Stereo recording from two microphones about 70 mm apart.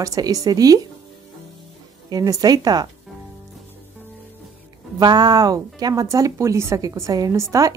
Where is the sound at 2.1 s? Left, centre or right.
Right.